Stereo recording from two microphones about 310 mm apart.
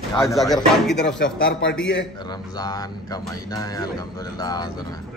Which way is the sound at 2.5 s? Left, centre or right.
Centre.